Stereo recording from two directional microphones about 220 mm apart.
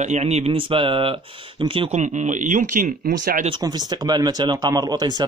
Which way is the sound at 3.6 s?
20° right (ahead or behind).